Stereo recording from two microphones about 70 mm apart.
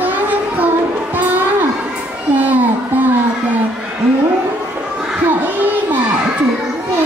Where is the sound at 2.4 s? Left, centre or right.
Right.